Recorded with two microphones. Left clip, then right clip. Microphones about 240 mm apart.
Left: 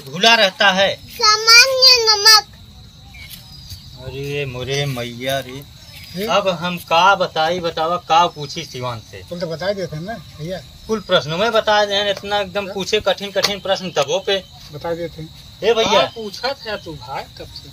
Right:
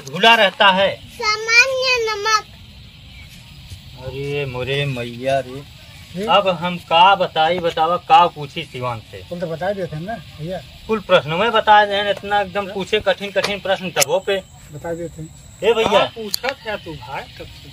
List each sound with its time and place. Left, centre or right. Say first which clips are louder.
0.1 s speech: right 1 dB; centre
1.2 s child singing: left 4 dB; centre
4.3 s speech: right 1 dB; centre
10.9 s speech: right 2 dB; centre